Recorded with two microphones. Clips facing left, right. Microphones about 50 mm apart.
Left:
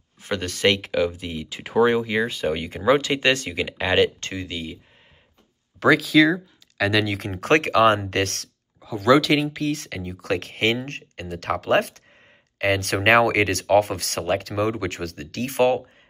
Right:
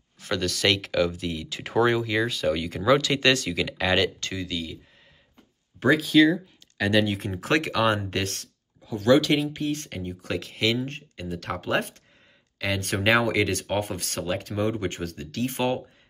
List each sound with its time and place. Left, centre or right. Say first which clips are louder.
0.2 s speech: left 3 dB; left
4.2 s speech: left 1 dB; left
5.8 s speech: left 2 dB; left
7.1 s speech: left 5 dB; left
9.3 s speech: left 3 dB; left
10.4 s speech: right 1 dB; left
12.5 s speech: left 7 dB; left
12.8 s speech: left 4 dB; left
13.1 s speech: left 5 dB; left